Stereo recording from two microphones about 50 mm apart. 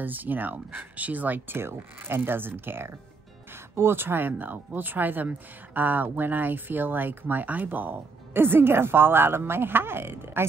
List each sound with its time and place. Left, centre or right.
0.0 s speech: right
1.6 s speech: right